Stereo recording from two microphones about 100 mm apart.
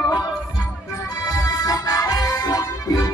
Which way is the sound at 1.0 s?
35° left (ahead or behind).